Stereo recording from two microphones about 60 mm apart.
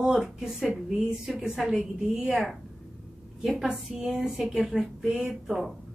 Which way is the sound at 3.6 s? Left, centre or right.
Centre.